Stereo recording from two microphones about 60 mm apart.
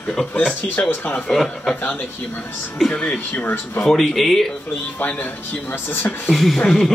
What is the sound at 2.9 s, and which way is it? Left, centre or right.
Speech, centre.